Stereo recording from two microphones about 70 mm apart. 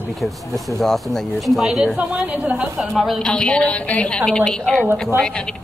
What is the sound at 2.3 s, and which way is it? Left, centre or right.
Speech, centre.